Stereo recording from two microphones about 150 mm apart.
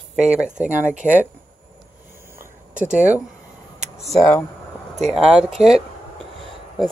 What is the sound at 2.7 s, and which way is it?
Speech, 55° right (ahead or behind).